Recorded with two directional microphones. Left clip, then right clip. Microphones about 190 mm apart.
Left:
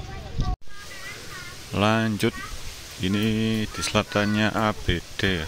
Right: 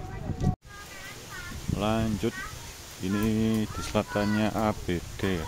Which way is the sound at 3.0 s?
10° left (ahead or behind).